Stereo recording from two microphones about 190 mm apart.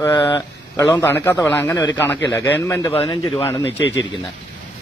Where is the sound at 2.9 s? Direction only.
25° left (ahead or behind).